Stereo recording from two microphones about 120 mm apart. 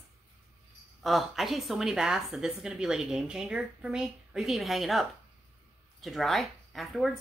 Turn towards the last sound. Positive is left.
turn(degrees=0)  # may be behind; listen again after turning